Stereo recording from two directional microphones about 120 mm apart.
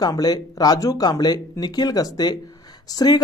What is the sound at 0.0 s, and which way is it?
A woman's voice, 35° left (ahead or behind).